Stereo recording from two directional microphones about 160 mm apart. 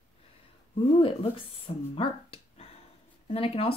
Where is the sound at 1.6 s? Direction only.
35° left (ahead or behind).